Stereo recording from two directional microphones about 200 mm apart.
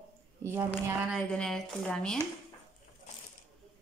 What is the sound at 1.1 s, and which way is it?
A woman's voice, 5° left (ahead or behind).